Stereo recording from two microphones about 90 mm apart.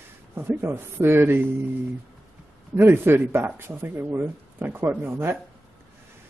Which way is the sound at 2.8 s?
25° right (ahead or behind).